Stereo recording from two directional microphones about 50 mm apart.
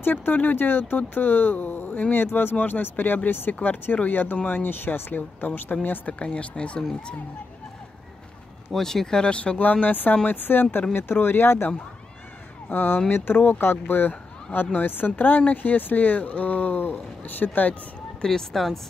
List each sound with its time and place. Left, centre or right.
0.0 s speech: left
2.1 s speech: left
3.5 s speech: left
6.1 s speech: left
8.7 s speech: centre
9.6 s speech: left
18.2 s speech: centre